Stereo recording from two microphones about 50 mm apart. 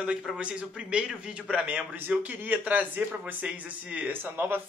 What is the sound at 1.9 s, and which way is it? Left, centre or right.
A man's voice, right.